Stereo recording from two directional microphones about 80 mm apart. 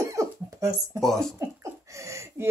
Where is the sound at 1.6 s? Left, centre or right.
Right.